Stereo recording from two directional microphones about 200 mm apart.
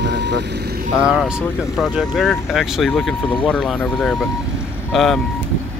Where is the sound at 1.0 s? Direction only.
5° right (ahead or behind).